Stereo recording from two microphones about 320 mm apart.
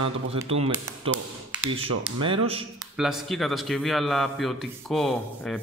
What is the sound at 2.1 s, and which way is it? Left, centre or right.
Speech, centre.